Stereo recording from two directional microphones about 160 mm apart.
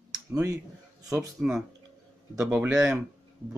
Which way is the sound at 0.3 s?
20° right (ahead or behind).